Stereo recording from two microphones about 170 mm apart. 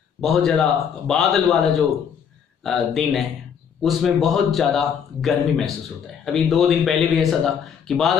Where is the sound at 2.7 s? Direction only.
Centre (ahead or behind).